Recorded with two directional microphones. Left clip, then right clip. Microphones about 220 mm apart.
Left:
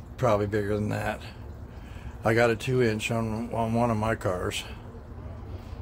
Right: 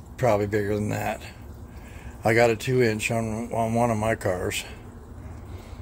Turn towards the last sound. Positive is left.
turn(degrees=-15)  # may be behind; listen again after turning